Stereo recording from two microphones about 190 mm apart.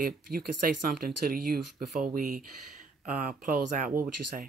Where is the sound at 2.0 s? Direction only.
45° right (ahead or behind).